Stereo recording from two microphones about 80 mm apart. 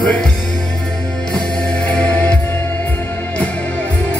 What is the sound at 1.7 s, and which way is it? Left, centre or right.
Music, centre.